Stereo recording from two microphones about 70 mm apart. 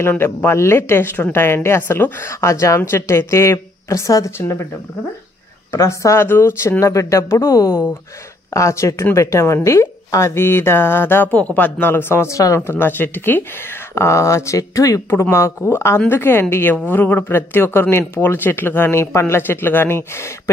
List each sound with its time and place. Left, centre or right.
0.1 s a woman's voice: left
2.2 s speech: left
4.4 s a woman's voice: left
5.7 s a woman's voice: left
6.8 s speech: left
8.5 s a woman's voice: left
12.3 s speech: left
12.5 s a woman's voice: left
13.9 s speech: left
15.0 s a woman's voice: left